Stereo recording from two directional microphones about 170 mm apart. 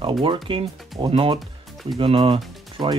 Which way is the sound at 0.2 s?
30° right (ahead or behind).